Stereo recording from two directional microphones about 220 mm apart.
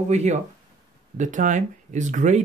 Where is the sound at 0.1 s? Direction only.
30° right (ahead or behind).